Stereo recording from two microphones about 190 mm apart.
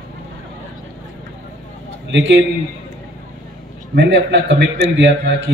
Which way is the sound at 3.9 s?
65° right (ahead or behind).